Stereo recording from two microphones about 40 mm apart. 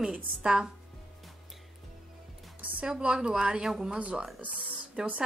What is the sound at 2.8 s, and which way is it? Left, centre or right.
Speech, right.